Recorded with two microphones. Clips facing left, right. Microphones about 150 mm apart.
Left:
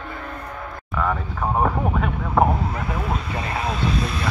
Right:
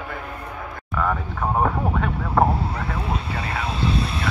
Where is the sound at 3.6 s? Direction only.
30° right (ahead or behind).